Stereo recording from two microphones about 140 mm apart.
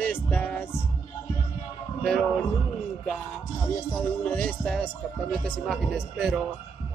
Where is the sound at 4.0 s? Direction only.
15° left (ahead or behind).